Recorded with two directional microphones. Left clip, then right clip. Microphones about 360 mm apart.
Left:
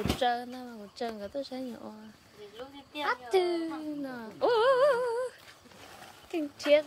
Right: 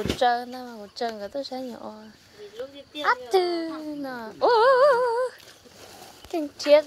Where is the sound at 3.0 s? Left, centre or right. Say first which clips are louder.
Right 6 dB; centre.